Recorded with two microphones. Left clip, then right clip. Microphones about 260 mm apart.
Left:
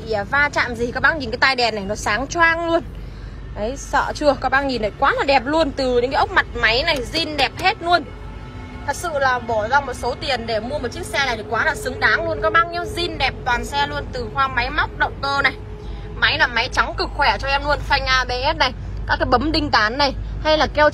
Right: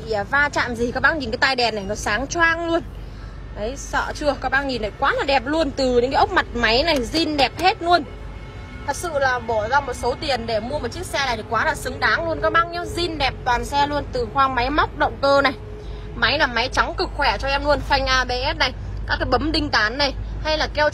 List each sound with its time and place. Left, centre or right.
0.3 s a woman's voice: centre